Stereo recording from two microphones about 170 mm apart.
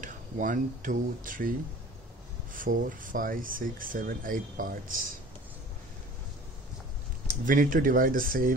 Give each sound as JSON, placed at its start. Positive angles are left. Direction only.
{"t": 0.0, "sound": "speech", "side_deg": -50}
{"t": 2.5, "sound": "speech", "side_deg": -50}
{"t": 7.4, "sound": "speech", "side_deg": -50}